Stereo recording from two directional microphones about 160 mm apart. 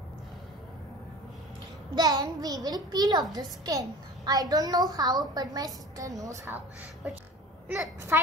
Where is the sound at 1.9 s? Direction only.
25° right (ahead or behind).